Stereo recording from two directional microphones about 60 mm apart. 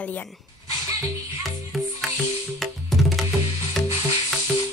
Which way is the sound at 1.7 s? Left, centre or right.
Centre.